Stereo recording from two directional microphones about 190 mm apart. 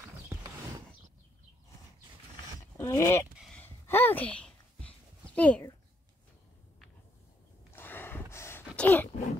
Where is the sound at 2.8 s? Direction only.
15° left (ahead or behind).